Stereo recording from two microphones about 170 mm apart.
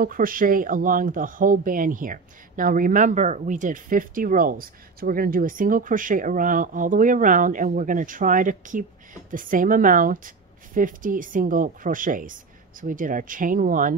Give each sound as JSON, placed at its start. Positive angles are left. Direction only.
{"t": 0.0, "sound": "speech", "side_deg": -55}